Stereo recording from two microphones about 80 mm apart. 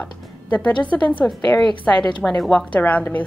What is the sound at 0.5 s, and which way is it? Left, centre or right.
A woman's voice, centre.